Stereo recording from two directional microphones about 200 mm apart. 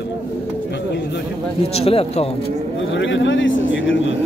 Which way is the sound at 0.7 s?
60° left (ahead or behind).